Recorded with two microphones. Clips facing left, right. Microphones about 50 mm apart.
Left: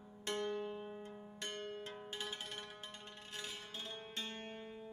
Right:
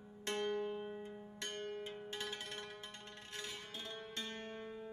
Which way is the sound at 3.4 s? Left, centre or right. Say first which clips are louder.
Even; right.